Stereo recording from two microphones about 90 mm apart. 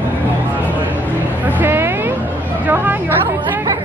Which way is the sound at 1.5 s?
20° right (ahead or behind).